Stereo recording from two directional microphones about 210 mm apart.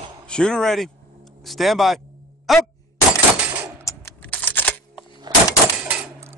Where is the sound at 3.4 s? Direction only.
10° right (ahead or behind).